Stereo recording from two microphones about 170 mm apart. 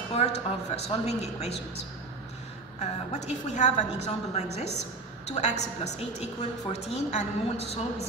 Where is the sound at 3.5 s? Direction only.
40° left (ahead or behind).